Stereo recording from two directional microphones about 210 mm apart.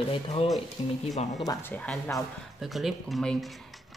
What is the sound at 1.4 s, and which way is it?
Speech, 5° left (ahead or behind).